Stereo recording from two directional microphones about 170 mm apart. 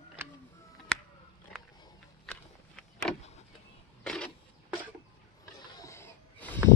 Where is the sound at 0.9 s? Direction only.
5° left (ahead or behind).